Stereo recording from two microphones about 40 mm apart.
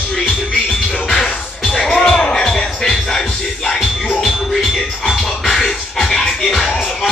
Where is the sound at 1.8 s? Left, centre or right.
Centre.